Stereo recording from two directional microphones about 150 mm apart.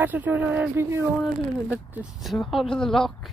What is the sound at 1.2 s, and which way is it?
Speech, 5° right (ahead or behind).